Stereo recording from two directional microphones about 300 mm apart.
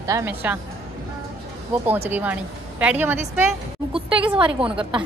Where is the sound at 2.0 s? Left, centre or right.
Centre.